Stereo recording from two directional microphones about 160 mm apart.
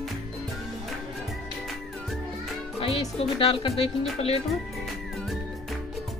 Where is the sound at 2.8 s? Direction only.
35° left (ahead or behind).